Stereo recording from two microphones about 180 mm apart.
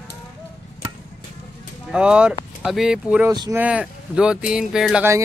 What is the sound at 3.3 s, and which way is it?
Speech, 15° right (ahead or behind).